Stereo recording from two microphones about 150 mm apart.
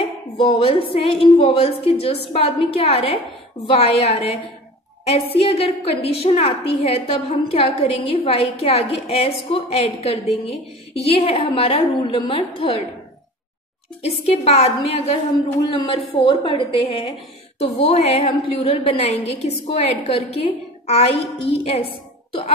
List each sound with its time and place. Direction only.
0.5 s a woman's voice: 40° left (ahead or behind)
5.3 s a woman's voice: 40° left (ahead or behind)
14.0 s a woman's voice: 45° left (ahead or behind)